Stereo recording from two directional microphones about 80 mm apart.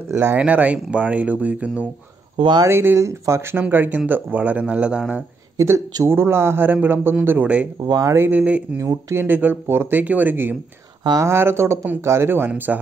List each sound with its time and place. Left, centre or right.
0.1 s speech: right
0.4 s speech: centre
2.7 s speech: right
3.5 s speech: right
5.6 s speech: right
6.0 s speech: right
7.8 s speech: right
8.1 s speech: right
8.4 s speech: centre
8.7 s speech: right